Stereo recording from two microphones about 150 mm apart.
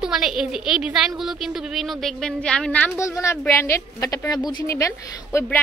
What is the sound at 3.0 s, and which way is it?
Speech, 20° left (ahead or behind).